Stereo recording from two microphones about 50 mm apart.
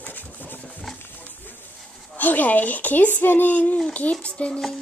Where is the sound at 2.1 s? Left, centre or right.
Left.